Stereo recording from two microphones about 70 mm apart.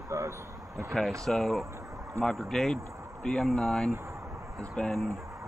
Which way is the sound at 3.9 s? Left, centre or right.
Right.